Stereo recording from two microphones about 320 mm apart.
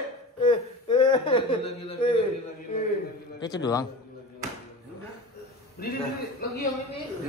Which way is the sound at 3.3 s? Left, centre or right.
Centre.